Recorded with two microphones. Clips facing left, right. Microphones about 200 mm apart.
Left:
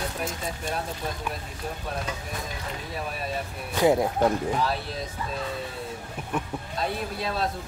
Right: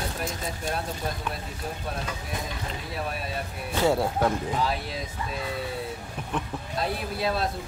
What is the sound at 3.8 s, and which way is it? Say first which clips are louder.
Speech: left 2 dB; 15° left (ahead or behind).